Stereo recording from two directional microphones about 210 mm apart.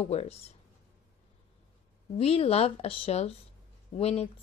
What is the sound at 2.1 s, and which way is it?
Speech, 30° left (ahead or behind).